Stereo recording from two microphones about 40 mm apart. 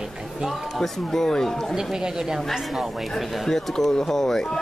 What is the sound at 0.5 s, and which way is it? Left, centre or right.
Speech, centre.